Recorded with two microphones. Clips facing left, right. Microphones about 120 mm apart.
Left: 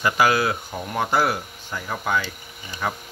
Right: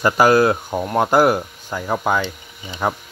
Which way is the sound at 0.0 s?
45° right (ahead or behind).